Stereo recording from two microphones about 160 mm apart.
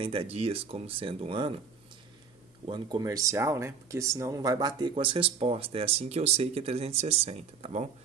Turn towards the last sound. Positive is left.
turn(degrees=-40)  # may be behind; listen again after turning